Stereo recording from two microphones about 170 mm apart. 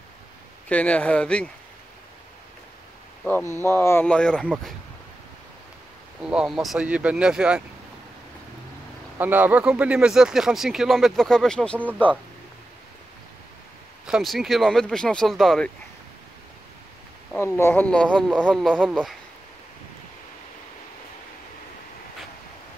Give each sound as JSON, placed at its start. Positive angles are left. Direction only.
{"t": 0.7, "sound": "speech", "side_deg": 10}
{"t": 3.4, "sound": "speech", "side_deg": -20}
{"t": 3.7, "sound": "speech", "side_deg": 10}
{"t": 6.2, "sound": "speech", "side_deg": -5}
{"t": 9.2, "sound": "speech", "side_deg": -10}
{"t": 14.0, "sound": "speech", "side_deg": 0}
{"t": 17.4, "sound": "speech", "side_deg": 15}